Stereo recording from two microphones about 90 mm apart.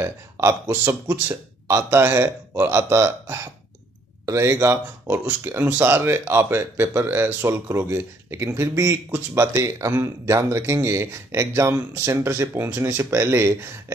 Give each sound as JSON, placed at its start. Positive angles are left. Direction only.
{"t": 0.0, "sound": "speech", "side_deg": -25}
{"t": 1.3, "sound": "speech", "side_deg": -30}